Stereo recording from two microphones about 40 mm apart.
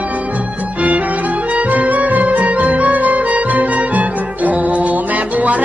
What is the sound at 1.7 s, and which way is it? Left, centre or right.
Music, right.